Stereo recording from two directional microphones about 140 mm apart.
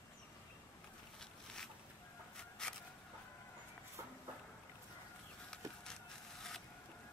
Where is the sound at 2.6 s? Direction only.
5° left (ahead or behind).